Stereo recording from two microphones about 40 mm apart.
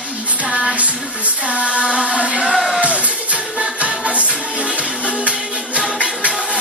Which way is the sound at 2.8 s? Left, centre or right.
Right.